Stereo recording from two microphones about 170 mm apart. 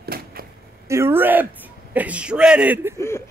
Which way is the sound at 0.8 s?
15° right (ahead or behind).